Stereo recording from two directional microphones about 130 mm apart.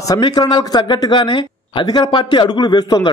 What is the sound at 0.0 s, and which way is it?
Speech, 30° left (ahead or behind).